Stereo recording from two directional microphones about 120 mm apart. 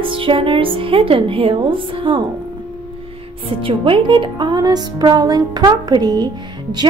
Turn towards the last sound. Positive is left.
turn(degrees=-35)  # may be behind; listen again after turning